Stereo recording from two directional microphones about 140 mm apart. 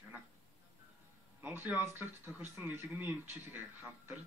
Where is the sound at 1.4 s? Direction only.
15° right (ahead or behind).